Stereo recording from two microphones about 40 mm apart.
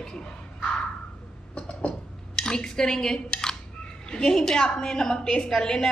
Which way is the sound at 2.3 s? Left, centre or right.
Centre.